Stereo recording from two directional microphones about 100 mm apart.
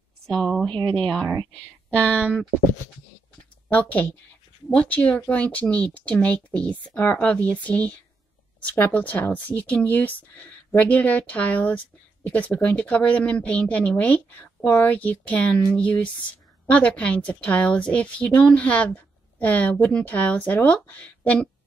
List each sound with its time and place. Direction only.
0.3 s speech: 5° left (ahead or behind)
0.7 s speech: 55° right (ahead or behind)
1.0 s speech: 5° left (ahead or behind)
3.7 s speech: 15° left (ahead or behind)